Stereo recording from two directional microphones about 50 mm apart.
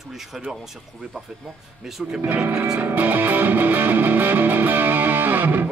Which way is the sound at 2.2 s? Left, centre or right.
Right.